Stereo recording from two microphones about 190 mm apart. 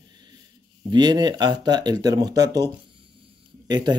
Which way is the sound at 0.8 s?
20° right (ahead or behind).